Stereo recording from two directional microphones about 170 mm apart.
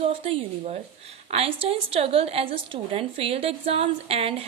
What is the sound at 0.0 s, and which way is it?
A woman's voice, 30° right (ahead or behind).